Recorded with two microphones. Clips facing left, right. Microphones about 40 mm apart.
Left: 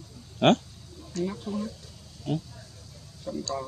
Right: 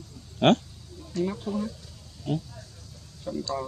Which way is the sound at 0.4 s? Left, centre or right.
Centre.